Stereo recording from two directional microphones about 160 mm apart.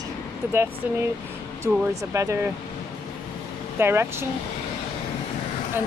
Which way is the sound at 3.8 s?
15° right (ahead or behind).